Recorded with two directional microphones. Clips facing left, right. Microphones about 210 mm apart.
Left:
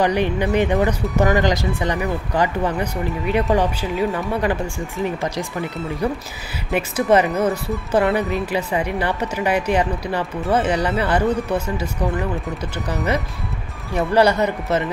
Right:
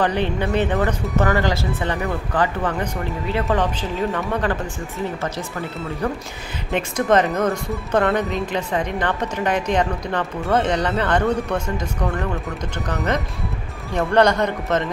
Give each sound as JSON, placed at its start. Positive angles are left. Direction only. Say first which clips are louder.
{"t": 0.0, "sound": "speech", "louder": "left 2 dB", "side_deg": 10}
{"t": 4.1, "sound": "a woman's voice", "louder": "left 1 dB", "side_deg": 5}
{"t": 6.7, "sound": "speech", "louder": "left 1 dB", "side_deg": 5}